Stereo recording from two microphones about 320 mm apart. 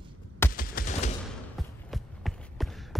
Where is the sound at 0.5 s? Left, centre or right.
Left.